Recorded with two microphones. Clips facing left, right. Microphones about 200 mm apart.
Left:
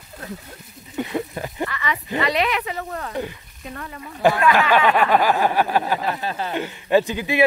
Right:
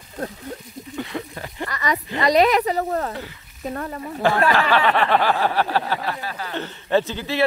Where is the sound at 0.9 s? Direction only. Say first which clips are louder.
Left 5 dB; 20° left (ahead or behind).